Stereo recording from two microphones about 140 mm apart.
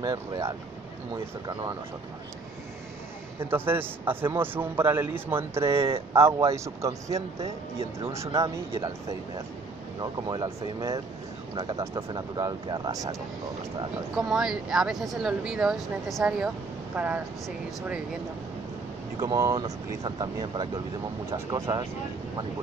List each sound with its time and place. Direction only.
0.0 s speech: 25° right (ahead or behind)
3.3 s a man's voice: 15° right (ahead or behind)
8.3 s speech: 25° right (ahead or behind)
10.1 s speech: 30° right (ahead or behind)
14.1 s speech: 5° right (ahead or behind)
19.1 s speech: 25° right (ahead or behind)